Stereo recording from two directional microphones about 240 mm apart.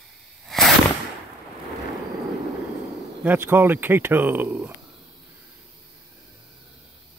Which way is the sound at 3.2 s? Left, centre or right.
Centre.